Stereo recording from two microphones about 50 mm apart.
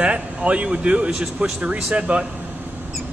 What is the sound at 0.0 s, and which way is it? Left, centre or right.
Speech, right.